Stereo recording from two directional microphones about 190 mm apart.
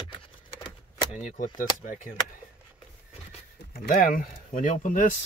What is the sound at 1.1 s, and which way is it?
Speech, 45° left (ahead or behind).